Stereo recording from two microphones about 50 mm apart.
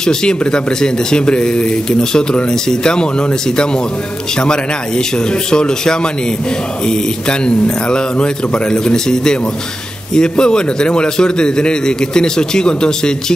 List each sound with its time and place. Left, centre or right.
0.0 s speech: centre